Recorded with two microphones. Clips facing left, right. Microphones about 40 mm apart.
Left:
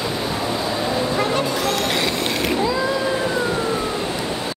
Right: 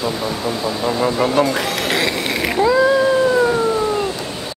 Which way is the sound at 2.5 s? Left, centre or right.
Right.